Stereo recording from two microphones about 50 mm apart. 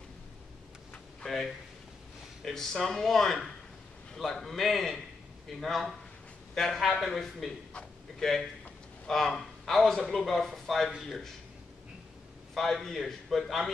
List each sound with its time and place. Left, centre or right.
1.2 s a sound: centre
2.4 s a man's voice: centre
12.5 s speech: centre